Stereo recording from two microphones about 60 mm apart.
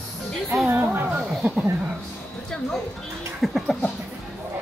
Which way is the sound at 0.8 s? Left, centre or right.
Right.